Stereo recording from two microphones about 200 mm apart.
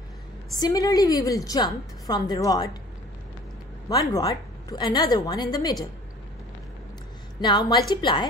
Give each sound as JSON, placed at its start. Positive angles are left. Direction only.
{"t": 0.6, "sound": "a woman's voice", "side_deg": 20}
{"t": 3.9, "sound": "a woman's voice", "side_deg": 15}
{"t": 7.3, "sound": "a woman's voice", "side_deg": 20}